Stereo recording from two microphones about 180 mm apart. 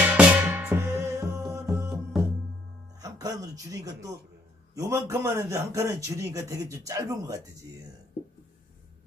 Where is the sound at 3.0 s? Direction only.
20° right (ahead or behind).